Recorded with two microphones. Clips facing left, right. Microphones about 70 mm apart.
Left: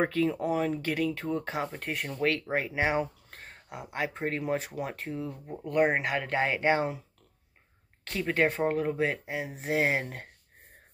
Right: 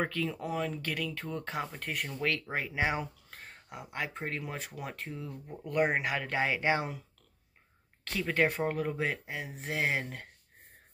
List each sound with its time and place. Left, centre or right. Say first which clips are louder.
0.0 s speech: left 6 dB; left
1.2 s speech: left 5 dB; centre
5.9 s speech: left 3 dB; centre
8.0 s speech: left 2 dB; centre
9.9 s speech: left 3 dB; left